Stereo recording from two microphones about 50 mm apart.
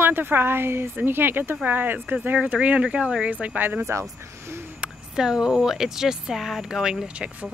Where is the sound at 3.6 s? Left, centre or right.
Right.